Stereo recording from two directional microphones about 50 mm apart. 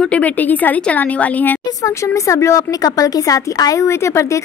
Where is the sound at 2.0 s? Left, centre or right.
Left.